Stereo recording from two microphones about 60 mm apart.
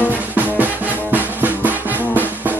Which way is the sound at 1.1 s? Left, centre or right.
Right.